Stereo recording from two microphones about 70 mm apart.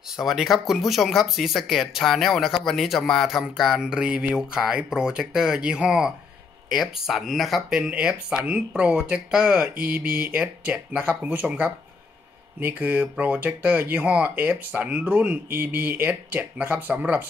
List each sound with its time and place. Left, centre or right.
0.1 s speech: centre
7.8 s speech: centre